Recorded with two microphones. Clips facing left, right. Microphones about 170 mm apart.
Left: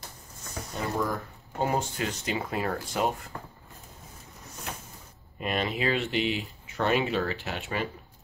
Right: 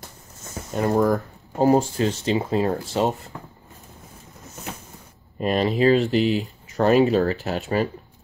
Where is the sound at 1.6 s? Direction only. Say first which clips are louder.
Right 10 dB; 30° right (ahead or behind).